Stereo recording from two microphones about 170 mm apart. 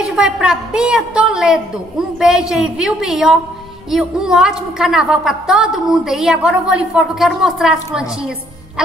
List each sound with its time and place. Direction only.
0.0 s a woman's voice: 5° right (ahead or behind)